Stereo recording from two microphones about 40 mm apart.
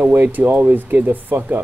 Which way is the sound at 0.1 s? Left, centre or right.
Right.